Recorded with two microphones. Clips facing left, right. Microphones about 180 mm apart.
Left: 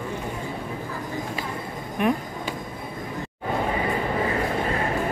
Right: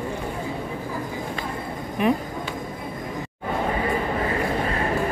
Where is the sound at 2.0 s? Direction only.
Centre (ahead or behind).